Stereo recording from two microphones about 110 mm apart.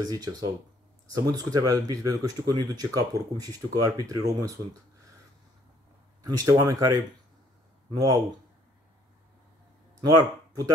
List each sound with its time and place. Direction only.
0.0 s speech: 35° right (ahead or behind)
6.2 s speech: 35° right (ahead or behind)
10.0 s speech: 35° right (ahead or behind)